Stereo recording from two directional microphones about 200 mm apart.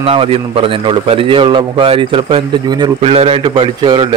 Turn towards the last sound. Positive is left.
turn(degrees=-25)  # may be behind; listen again after turning